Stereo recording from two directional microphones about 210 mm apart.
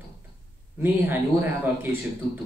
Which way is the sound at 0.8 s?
10° right (ahead or behind).